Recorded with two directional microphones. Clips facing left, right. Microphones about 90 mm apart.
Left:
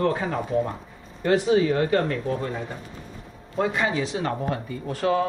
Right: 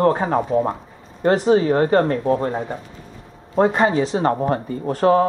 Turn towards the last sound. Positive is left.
turn(degrees=-40)  # may be behind; listen again after turning